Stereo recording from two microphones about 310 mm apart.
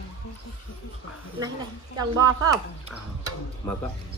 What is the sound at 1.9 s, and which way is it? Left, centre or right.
Speech, centre.